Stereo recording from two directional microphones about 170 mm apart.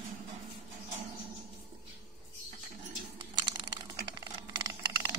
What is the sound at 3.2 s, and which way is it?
Computer keyboard, 25° right (ahead or behind).